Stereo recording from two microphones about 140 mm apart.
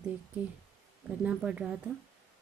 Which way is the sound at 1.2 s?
5° right (ahead or behind).